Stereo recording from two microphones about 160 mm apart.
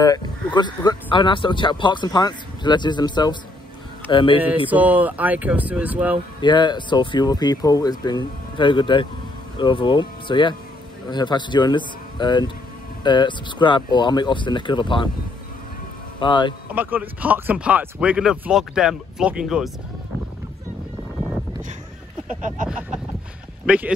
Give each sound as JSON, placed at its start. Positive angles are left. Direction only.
{"t": 0.0, "sound": "speech", "side_deg": 25}
{"t": 4.6, "sound": "speech", "side_deg": -10}
{"t": 6.4, "sound": "speech", "side_deg": 30}
{"t": 16.2, "sound": "speech", "side_deg": 30}
{"t": 16.7, "sound": "speech", "side_deg": -10}
{"t": 23.6, "sound": "speech", "side_deg": -5}